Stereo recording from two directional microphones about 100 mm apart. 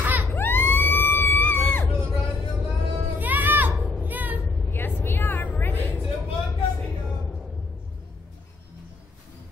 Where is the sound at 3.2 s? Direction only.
15° right (ahead or behind).